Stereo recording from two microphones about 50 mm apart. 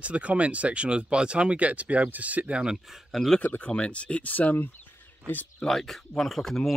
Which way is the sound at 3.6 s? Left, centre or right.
Left.